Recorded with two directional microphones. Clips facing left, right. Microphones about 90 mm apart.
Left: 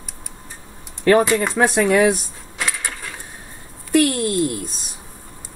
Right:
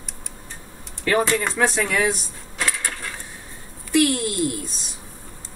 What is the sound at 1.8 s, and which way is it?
Speech, 25° left (ahead or behind).